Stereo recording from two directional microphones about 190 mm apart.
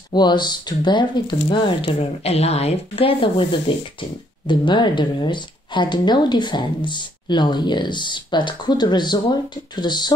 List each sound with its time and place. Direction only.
0.1 s speech: 20° left (ahead or behind)